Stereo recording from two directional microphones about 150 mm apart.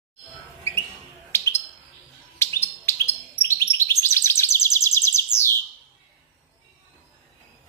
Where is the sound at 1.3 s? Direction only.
15° left (ahead or behind).